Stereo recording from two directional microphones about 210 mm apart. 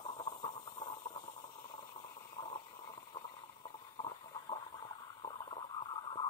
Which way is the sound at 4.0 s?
20° left (ahead or behind).